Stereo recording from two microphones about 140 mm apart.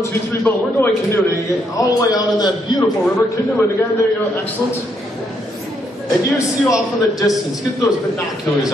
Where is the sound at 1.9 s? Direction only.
25° left (ahead or behind).